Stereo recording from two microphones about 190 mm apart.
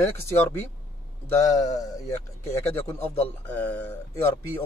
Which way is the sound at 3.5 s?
10° left (ahead or behind).